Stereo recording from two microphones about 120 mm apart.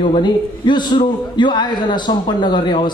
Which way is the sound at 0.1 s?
40° left (ahead or behind).